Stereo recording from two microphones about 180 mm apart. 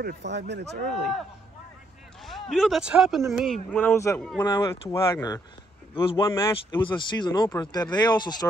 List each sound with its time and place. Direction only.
0.0 s speech: 65° right (ahead or behind)
2.5 s speech: centre (ahead or behind)
3.7 s a man's voice: 10° left (ahead or behind)
4.2 s speech: 5° left (ahead or behind)
4.5 s a man's voice: 25° left (ahead or behind)
5.9 s speech: 30° left (ahead or behind)